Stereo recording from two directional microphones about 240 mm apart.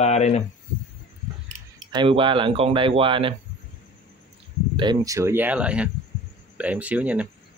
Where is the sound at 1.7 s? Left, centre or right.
Centre.